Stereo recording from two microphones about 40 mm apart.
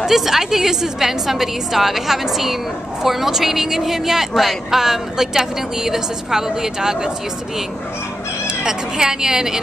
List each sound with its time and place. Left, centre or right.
0.0 s speech: centre
8.5 s speech: centre